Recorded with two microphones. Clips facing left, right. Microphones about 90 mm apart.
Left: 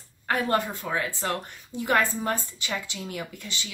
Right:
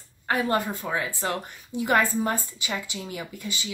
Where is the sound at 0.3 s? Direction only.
5° right (ahead or behind).